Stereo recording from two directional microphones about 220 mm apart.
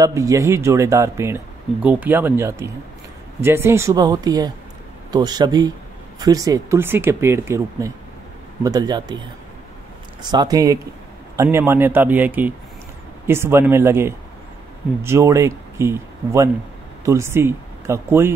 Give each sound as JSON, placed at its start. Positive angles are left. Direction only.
{"t": 0.0, "sound": "speech", "side_deg": -15}
{"t": 10.3, "sound": "speech", "side_deg": -15}